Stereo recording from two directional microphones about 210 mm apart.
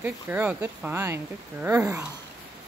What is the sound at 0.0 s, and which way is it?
Speech, 10° right (ahead or behind).